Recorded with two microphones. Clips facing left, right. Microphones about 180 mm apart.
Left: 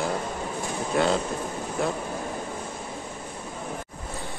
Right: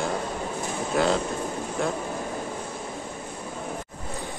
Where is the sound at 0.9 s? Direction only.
Centre (ahead or behind).